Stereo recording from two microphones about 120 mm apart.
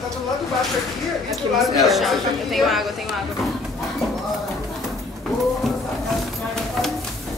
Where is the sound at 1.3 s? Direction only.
Centre (ahead or behind).